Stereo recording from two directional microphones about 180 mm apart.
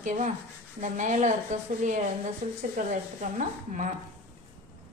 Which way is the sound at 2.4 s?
45° right (ahead or behind).